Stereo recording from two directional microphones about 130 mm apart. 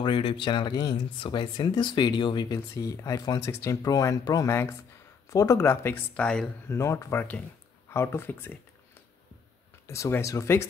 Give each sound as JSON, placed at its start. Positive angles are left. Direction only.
{"t": 0.0, "sound": "speech", "side_deg": 40}
{"t": 2.7, "sound": "speech", "side_deg": 25}
{"t": 6.7, "sound": "speech", "side_deg": 20}
{"t": 9.8, "sound": "speech", "side_deg": 20}